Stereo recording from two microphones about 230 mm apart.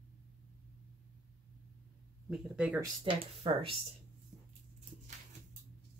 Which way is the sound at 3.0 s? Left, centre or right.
Right.